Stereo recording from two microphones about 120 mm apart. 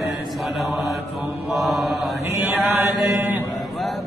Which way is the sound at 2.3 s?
20° right (ahead or behind).